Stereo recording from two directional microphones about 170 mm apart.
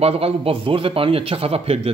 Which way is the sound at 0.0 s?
35° right (ahead or behind).